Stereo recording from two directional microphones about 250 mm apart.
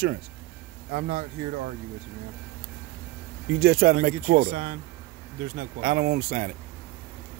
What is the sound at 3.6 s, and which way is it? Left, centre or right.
Speech, right.